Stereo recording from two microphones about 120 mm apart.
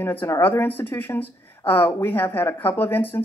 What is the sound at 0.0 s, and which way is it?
Speech, 15° left (ahead or behind).